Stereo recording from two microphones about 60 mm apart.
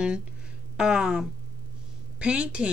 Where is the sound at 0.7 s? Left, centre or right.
Centre.